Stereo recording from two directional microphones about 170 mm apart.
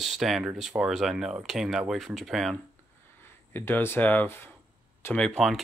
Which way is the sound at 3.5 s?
15° left (ahead or behind).